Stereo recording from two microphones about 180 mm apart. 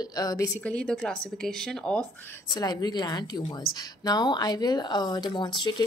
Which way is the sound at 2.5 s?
20° left (ahead or behind).